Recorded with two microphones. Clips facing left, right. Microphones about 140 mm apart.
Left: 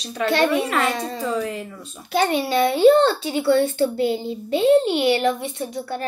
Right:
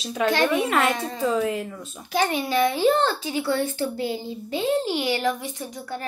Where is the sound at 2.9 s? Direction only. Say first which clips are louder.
Left 6 dB; 25° left (ahead or behind).